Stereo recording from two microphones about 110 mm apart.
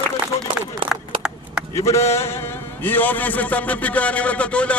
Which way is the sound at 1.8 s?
25° left (ahead or behind).